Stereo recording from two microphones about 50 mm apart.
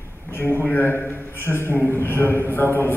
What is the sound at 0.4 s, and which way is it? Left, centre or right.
A man's voice, left.